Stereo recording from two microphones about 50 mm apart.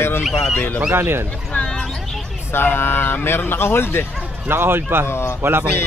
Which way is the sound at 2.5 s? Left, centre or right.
Left.